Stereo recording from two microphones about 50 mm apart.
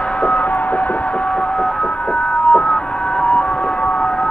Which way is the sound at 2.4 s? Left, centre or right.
Left.